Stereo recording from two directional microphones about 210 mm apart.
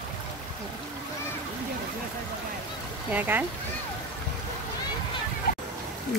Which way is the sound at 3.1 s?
10° right (ahead or behind).